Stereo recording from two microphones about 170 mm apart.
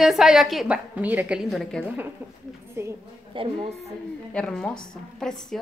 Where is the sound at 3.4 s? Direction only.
30° right (ahead or behind).